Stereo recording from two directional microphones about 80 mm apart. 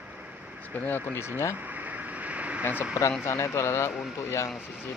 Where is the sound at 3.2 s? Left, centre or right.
Left.